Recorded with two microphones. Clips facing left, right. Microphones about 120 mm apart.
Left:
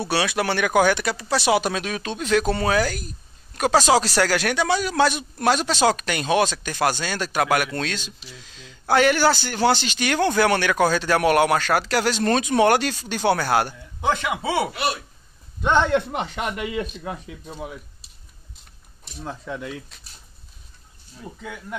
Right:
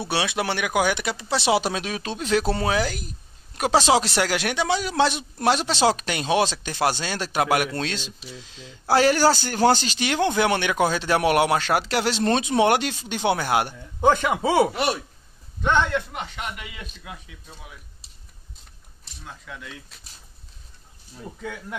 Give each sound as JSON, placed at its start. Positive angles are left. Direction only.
{"t": 0.0, "sound": "speech", "side_deg": -20}
{"t": 9.9, "sound": "speech", "side_deg": -20}
{"t": 14.0, "sound": "speech", "side_deg": -40}
{"t": 16.2, "sound": "speech", "side_deg": 40}
{"t": 19.2, "sound": "speech", "side_deg": 35}
{"t": 19.9, "sound": "speech", "side_deg": -5}
{"t": 21.2, "sound": "speech", "side_deg": 5}